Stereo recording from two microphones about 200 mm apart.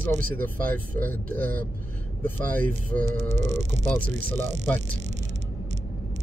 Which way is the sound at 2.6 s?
45° right (ahead or behind).